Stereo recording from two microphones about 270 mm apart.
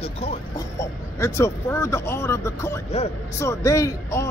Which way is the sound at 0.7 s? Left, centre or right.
Centre.